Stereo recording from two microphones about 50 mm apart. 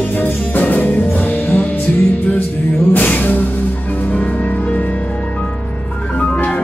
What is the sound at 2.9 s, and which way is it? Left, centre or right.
Music, left.